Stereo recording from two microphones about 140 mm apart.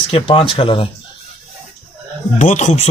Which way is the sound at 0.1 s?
40° left (ahead or behind).